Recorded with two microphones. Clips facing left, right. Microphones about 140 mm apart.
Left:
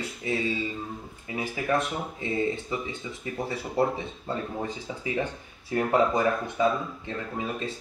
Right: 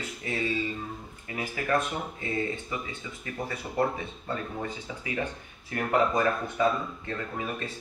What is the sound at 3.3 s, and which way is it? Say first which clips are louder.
Speech: left 2 dB; 10° left (ahead or behind).